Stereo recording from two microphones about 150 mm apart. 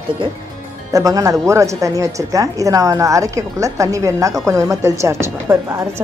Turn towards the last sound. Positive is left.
turn(degrees=-20)  # may be behind; listen again after turning